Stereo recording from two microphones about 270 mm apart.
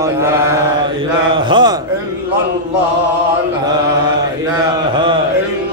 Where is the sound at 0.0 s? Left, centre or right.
Centre.